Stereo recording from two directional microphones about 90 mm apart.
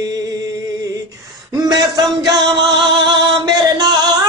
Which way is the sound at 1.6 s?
50° right (ahead or behind).